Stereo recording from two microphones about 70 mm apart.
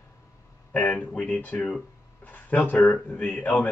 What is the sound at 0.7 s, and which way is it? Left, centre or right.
Speech, left.